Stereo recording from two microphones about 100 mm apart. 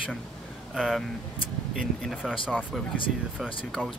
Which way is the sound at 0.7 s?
5° right (ahead or behind).